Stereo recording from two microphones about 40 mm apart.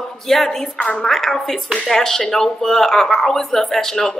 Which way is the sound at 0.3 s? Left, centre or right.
Centre.